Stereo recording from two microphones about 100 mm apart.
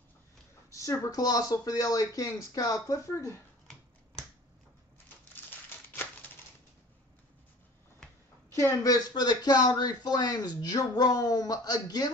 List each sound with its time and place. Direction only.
0.7 s speech: 30° left (ahead or behind)
8.5 s speech: 30° left (ahead or behind)
9.1 s speech: 45° left (ahead or behind)